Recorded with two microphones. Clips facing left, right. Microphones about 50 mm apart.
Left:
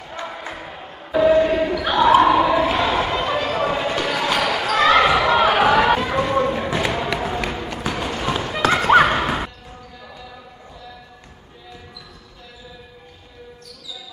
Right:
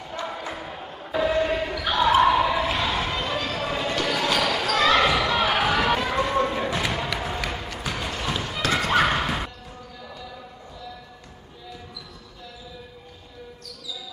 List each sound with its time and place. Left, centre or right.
0.3 s basketball bounce: centre